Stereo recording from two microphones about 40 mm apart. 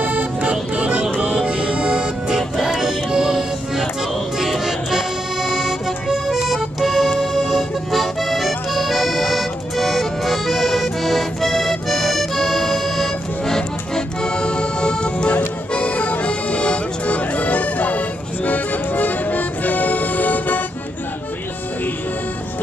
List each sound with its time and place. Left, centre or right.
0.0 s music: right
0.4 s music: right; by 3.8 s centre
4.4 s accordion: centre
13.6 s accordion: centre
15.7 s music: left